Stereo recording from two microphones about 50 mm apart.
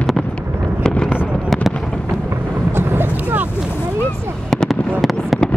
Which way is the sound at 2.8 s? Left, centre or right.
Right.